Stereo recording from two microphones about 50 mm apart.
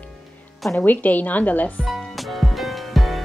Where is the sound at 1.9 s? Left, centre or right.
Centre.